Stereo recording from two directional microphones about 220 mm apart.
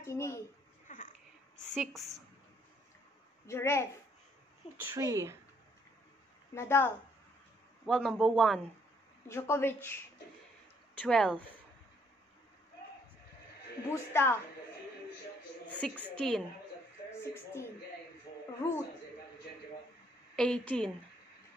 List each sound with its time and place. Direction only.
0.0 s speech: 10° left (ahead or behind)
0.9 s a sound: 35° left (ahead or behind)
1.7 s a man's voice: centre (ahead or behind)
3.4 s speech: 10° left (ahead or behind)
4.7 s speech: 10° right (ahead or behind)
6.5 s speech: 10° left (ahead or behind)
7.8 s a man's voice: centre (ahead or behind)
9.3 s speech: 10° left (ahead or behind)
11.0 s a man's voice: 5° left (ahead or behind)
13.8 s speech: 10° left (ahead or behind)
15.8 s a man's voice: centre (ahead or behind)
20.3 s a man's voice: 5° left (ahead or behind)